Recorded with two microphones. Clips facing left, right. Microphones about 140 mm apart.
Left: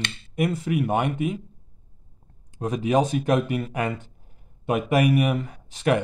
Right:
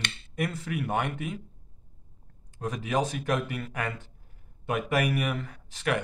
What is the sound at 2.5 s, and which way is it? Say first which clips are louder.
Speech: left 7 dB; 20° left (ahead or behind).